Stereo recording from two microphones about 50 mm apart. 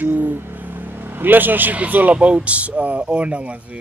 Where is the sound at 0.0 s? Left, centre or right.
Right.